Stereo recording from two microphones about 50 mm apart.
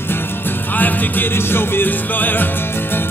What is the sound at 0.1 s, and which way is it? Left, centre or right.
Music, left.